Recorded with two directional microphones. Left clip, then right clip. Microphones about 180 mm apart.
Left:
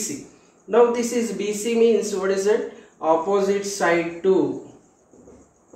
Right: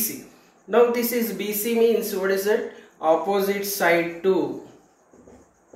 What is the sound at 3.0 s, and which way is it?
Speech, 20° left (ahead or behind).